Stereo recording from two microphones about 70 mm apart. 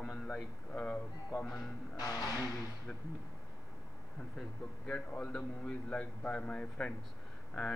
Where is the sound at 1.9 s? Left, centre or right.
Left.